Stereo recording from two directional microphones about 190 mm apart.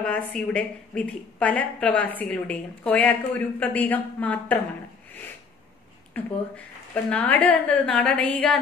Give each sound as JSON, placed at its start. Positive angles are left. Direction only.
{"t": 0.0, "sound": "a woman's voice", "side_deg": 5}
{"t": 6.2, "sound": "a woman's voice", "side_deg": 10}